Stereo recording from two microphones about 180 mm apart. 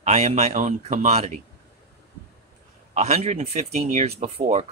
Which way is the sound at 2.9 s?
35° right (ahead or behind).